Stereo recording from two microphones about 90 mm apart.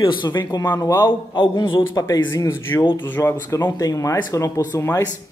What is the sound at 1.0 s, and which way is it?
Speech, 65° left (ahead or behind).